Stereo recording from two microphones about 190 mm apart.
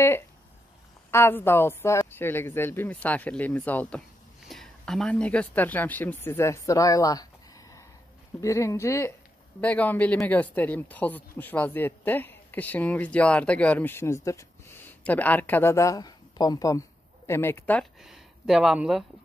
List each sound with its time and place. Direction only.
1.1 s speech: 10° left (ahead or behind)
8.4 s speech: 15° left (ahead or behind)
18.0 s speech: centre (ahead or behind)